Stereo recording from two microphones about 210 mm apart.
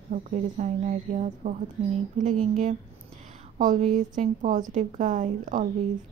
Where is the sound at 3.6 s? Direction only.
35° right (ahead or behind).